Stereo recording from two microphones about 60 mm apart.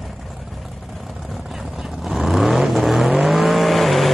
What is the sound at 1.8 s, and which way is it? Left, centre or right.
Vehicle, centre.